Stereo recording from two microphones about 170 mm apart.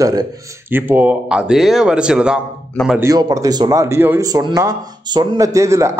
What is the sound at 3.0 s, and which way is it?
A man's voice, 20° right (ahead or behind).